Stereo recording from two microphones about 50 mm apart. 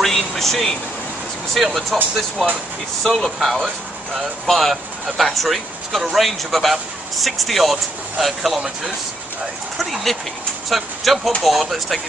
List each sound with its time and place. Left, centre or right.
0.0 s a sound: centre
1.5 s speech: centre
3.0 s speech: centre
8.5 s speech: centre
9.8 s speech: centre